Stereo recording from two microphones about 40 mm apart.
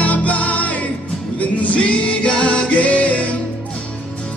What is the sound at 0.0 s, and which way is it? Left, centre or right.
Music, left.